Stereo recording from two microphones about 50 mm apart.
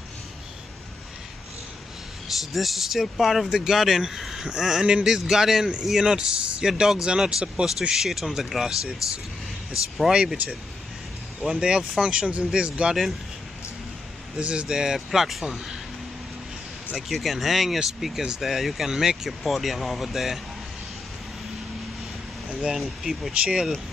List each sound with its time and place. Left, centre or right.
2.2 s speech: centre
3.4 s speech: centre
4.8 s speech: right
5.1 s speech: centre
7.9 s speech: centre
10.1 s speech: centre
12.0 s speech: right
14.4 s speech: right
14.7 s speech: centre
16.9 s speech: centre
22.5 s speech: centre
23.4 s speech: right